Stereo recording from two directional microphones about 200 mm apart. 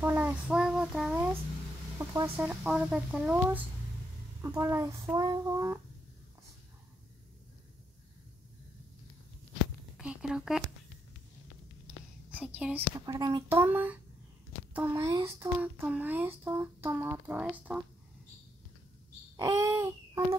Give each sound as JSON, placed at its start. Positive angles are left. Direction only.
{"t": 0.0, "sound": "child singing", "side_deg": -10}
{"t": 2.0, "sound": "a child's voice", "side_deg": -10}
{"t": 9.9, "sound": "a sound", "side_deg": -5}
{"t": 12.3, "sound": "whispering", "side_deg": -5}
{"t": 13.0, "sound": "a woman's voice", "side_deg": -20}
{"t": 19.3, "sound": "a child's voice", "side_deg": -15}